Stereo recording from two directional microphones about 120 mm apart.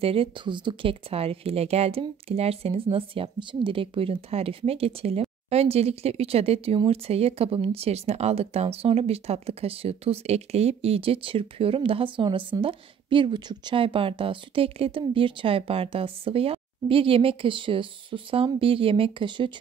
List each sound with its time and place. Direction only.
0.0 s speech: 50° right (ahead or behind)